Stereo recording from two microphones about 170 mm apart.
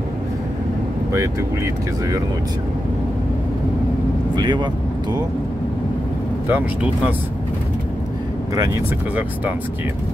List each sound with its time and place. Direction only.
4.4 s speech: 25° right (ahead or behind)
6.5 s speech: 10° right (ahead or behind)
8.5 s speech: 20° right (ahead or behind)